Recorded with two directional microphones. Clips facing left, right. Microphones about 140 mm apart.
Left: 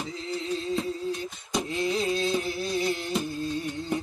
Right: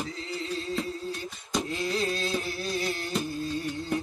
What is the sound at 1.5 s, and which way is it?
Music, centre (ahead or behind).